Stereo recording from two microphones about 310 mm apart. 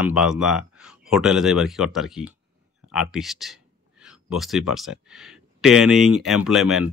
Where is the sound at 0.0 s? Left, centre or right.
Centre.